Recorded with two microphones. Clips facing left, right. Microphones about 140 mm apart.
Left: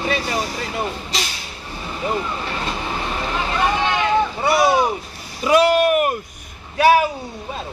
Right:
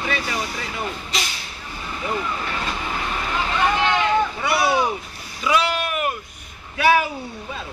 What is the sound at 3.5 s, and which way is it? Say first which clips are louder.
Boat: even; 10° left (ahead or behind).